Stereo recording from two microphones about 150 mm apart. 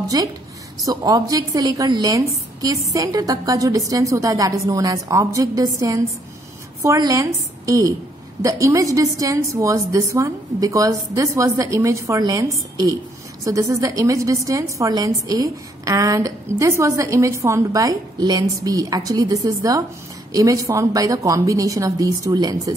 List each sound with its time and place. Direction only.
0.1 s a woman's voice: 25° right (ahead or behind)